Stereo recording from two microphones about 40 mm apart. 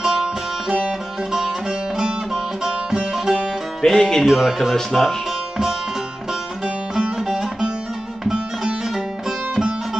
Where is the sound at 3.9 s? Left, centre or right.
Centre.